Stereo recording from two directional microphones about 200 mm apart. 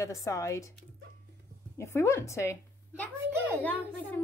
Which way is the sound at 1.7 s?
15° left (ahead or behind).